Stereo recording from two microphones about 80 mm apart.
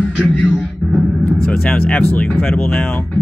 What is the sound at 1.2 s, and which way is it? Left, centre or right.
Vehicle, centre.